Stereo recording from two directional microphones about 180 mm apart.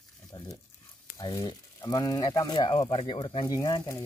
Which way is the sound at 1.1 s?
20° left (ahead or behind).